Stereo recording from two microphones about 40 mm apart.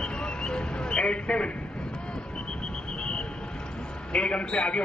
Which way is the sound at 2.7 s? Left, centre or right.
Left.